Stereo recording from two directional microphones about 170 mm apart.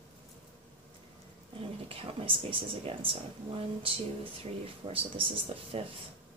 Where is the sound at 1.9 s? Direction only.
30° right (ahead or behind).